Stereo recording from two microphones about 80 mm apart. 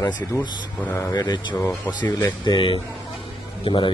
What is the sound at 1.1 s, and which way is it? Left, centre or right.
Speech, left.